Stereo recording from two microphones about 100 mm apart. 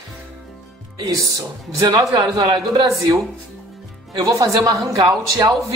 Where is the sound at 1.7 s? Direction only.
40° right (ahead or behind).